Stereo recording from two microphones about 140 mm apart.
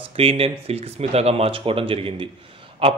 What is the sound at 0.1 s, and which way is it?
A man's voice, 45° right (ahead or behind).